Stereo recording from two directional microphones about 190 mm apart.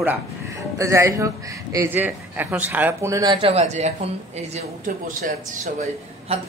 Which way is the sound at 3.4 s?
35° right (ahead or behind).